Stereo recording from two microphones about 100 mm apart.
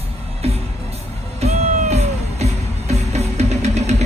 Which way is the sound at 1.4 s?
90° right.